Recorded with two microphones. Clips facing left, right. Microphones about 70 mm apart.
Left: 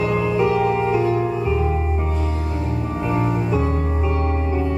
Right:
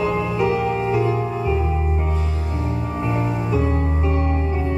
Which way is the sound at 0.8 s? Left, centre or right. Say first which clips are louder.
Left 1 dB; left.